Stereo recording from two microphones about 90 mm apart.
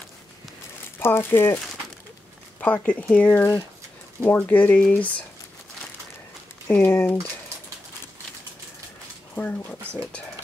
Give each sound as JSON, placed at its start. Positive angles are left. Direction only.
{"t": 0.9, "sound": "speech", "side_deg": 25}
{"t": 2.6, "sound": "speech", "side_deg": 15}
{"t": 6.7, "sound": "speech", "side_deg": 25}
{"t": 9.3, "sound": "speech", "side_deg": 15}